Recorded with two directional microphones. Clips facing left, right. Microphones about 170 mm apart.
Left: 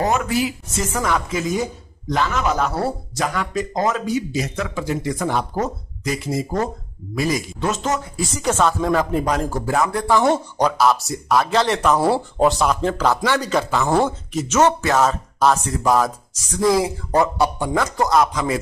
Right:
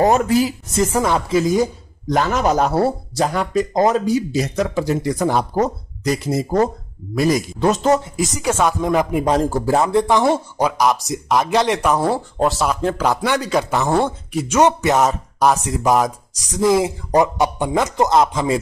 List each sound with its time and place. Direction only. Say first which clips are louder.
0.1 s speech: right 5 dB; 40° right (ahead or behind)
7.6 s speech: right 7 dB; 35° right (ahead or behind)
8.4 s speech: even; 10° right (ahead or behind)
9.3 s speech: right 4 dB; 30° right (ahead or behind)
10.2 s speech: even; 5° right (ahead or behind)
12.0 s speech: left 1 dB; 5° left (ahead or behind); by 13.8 s 15° right (ahead or behind)
13.8 s speech: even; centre (ahead or behind)
14.3 s speech: right 2 dB; 10° right (ahead or behind)